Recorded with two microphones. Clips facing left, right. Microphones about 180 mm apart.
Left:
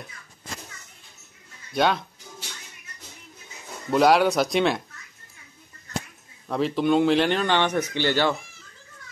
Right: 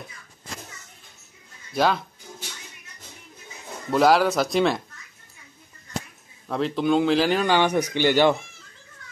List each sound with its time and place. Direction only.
1.7 s speech: centre (ahead or behind)
3.9 s speech: centre (ahead or behind)
6.4 s speech: centre (ahead or behind); by 8.4 s 15° right (ahead or behind)